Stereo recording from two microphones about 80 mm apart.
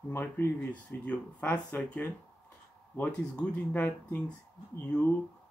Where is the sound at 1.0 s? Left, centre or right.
Centre.